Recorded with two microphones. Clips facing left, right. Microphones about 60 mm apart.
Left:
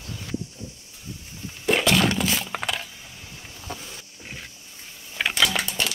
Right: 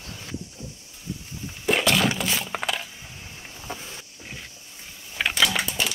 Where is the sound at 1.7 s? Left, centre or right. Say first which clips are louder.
Left 1 dB; centre.